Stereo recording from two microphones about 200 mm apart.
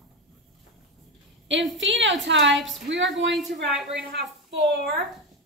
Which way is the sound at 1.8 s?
65° right (ahead or behind).